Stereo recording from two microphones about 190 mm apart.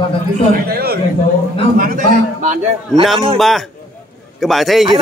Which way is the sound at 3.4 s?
Centre (ahead or behind).